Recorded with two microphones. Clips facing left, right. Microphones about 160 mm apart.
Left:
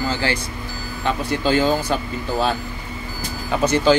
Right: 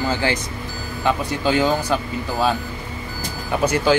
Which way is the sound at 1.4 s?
15° right (ahead or behind).